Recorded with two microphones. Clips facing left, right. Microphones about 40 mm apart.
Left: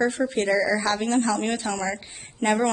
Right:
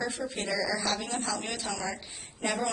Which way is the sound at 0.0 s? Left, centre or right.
Left.